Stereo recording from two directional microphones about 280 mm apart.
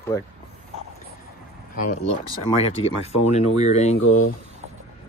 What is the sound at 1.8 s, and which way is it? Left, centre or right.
Speech, left.